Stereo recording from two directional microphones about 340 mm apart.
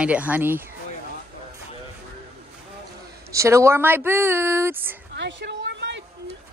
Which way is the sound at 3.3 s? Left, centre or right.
Centre.